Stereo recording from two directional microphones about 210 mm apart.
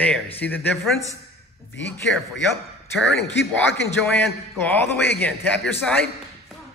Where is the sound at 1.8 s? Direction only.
55° left (ahead or behind).